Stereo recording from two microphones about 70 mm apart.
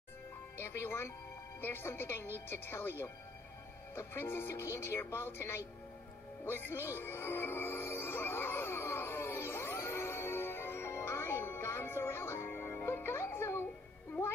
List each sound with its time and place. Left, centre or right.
0.6 s speech: left
6.4 s music: left